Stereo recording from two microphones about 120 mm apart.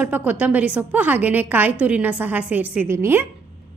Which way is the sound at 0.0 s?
15° right (ahead or behind).